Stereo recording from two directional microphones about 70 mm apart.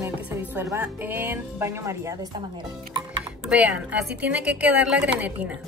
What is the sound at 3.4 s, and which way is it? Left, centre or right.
A woman's voice, centre.